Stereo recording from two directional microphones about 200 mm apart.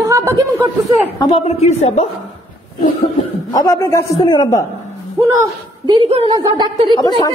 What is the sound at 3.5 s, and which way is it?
A man's voice, 15° left (ahead or behind).